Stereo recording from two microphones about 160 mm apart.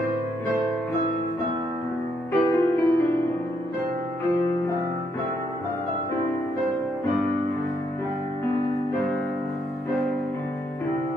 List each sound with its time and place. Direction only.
2.3 s music: 15° left (ahead or behind)